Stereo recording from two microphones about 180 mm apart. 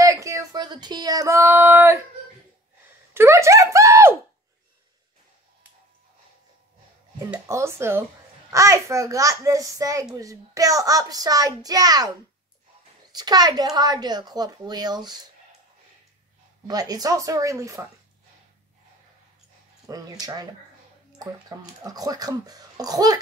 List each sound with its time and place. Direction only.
0.0 s speech: 15° right (ahead or behind)
3.1 s speech: 15° right (ahead or behind)
7.2 s a child's voice: 15° right (ahead or behind)
13.1 s speech: 20° right (ahead or behind)
16.6 s a child's voice: 20° right (ahead or behind)
19.9 s speech: 20° right (ahead or behind)